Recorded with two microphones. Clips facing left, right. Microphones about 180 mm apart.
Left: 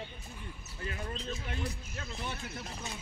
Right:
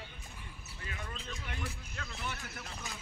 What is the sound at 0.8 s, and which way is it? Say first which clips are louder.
Speech: left 6 dB; 35° left (ahead or behind).